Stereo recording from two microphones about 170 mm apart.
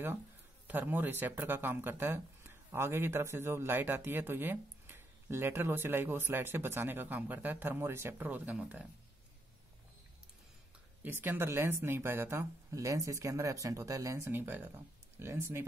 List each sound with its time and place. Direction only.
0.7 s speech: 10° right (ahead or behind)
11.0 s speech: 10° right (ahead or behind)